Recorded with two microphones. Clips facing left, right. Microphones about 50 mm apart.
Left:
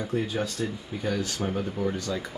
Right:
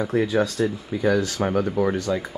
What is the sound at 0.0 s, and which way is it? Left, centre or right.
Speech, right.